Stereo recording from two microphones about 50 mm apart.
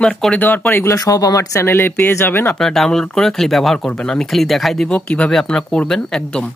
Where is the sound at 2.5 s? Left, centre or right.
Centre.